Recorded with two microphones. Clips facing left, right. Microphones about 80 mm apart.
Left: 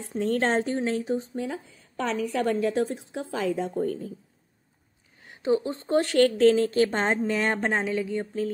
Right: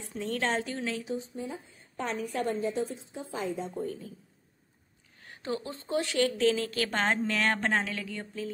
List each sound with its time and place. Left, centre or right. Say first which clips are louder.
0.0 s speech: left 7 dB; left
1.3 s speech: left 6 dB; left
2.0 s a woman's voice: left 6 dB; left
5.2 s a sound: left 10 dB; centre
5.6 s speech: left 8 dB; left
5.9 s speech: left 7 dB; left